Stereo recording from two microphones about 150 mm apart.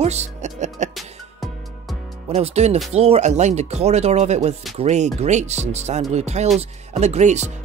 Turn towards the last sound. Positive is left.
turn(degrees=-50)  # may be behind; listen again after turning